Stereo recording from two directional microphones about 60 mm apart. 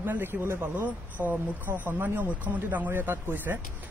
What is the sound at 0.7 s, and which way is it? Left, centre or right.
Speech, right.